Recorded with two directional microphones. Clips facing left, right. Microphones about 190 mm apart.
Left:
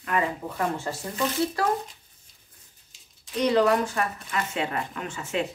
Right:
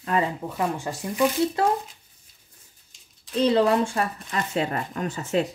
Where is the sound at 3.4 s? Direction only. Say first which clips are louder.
Right 2 dB; 30° right (ahead or behind).